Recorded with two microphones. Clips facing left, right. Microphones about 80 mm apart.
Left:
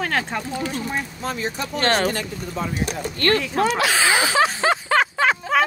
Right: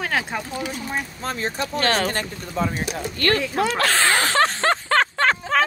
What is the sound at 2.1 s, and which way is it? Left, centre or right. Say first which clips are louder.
Speech: left 1 dB; right.